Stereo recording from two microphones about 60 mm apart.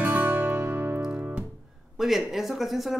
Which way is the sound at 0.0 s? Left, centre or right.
Right.